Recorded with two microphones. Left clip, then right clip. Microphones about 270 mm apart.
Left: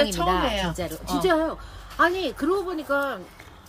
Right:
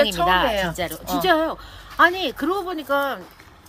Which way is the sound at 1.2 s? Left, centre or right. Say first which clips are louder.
Right 3 dB; centre.